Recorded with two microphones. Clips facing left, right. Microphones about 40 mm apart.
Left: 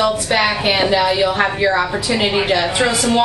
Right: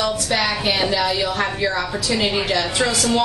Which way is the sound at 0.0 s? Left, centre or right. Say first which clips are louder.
Left 5 dB; left.